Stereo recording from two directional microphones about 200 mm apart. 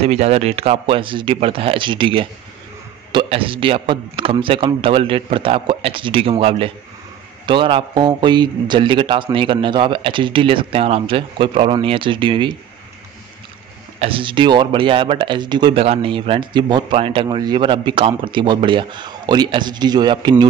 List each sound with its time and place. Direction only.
0.0 s speech: 30° right (ahead or behind)
13.9 s speech: 25° right (ahead or behind)